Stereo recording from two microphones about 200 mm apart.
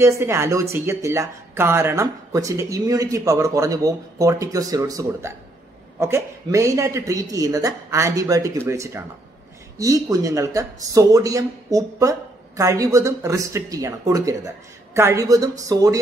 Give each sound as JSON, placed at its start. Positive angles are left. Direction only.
{"t": 0.0, "sound": "speech", "side_deg": -15}